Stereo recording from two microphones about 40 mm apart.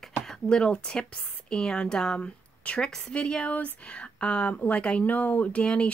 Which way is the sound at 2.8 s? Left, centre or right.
Left.